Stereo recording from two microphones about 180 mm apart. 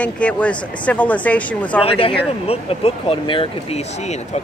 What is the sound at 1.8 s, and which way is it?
Speech, 30° left (ahead or behind).